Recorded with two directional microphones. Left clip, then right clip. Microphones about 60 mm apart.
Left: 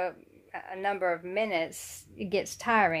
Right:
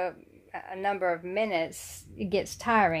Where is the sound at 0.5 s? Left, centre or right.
Right.